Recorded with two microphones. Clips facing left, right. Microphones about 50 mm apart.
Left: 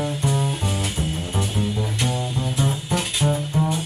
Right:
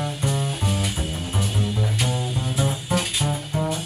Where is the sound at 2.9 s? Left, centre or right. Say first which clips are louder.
Left 2 dB; centre.